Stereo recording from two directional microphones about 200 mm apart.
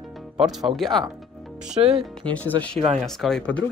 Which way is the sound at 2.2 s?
10° left (ahead or behind).